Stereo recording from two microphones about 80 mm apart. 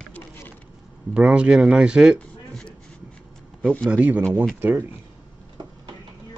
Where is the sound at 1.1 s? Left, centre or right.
Centre.